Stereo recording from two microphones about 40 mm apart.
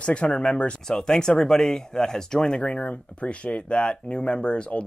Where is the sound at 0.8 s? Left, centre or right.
Centre.